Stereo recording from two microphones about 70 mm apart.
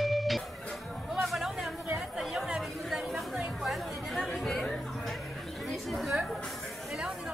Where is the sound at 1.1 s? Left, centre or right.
Centre.